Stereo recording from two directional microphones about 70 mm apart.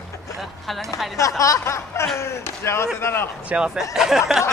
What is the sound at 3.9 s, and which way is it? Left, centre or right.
Speech, centre.